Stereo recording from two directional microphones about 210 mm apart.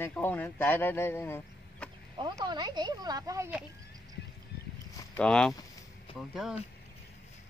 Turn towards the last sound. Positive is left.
turn(degrees=5)  # may be behind; listen again after turning